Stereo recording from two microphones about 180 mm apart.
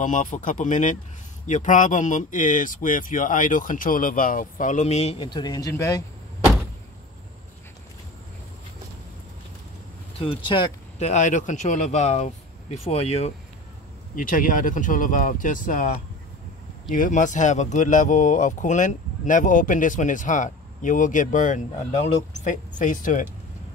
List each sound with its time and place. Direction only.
0.0 s speech: 45° left (ahead or behind); by 6.0 s 20° left (ahead or behind)
10.1 s speech: 30° left (ahead or behind)
14.1 s speech: 50° left (ahead or behind)